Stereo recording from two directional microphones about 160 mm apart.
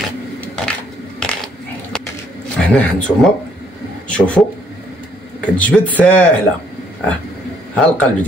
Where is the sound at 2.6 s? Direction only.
5° left (ahead or behind).